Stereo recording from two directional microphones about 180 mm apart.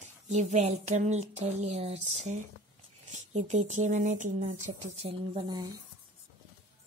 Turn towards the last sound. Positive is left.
turn(degrees=-20)  # may be behind; listen again after turning